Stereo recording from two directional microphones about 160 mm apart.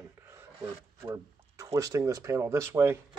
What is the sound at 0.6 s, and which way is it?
Speech, 20° right (ahead or behind).